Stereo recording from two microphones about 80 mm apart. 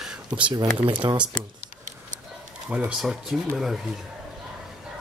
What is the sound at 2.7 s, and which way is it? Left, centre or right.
Speech, centre.